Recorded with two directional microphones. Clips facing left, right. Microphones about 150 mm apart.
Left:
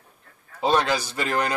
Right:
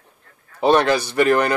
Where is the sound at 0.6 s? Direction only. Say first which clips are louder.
Right 6 dB; 65° right (ahead or behind).